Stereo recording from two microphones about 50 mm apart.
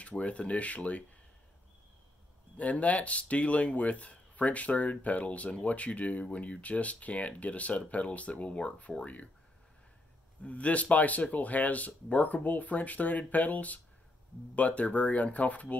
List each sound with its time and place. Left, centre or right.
0.0 s speech: left
2.5 s speech: left
10.4 s speech: left